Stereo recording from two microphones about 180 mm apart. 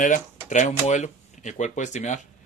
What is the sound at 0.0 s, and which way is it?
Speech, 45° left (ahead or behind).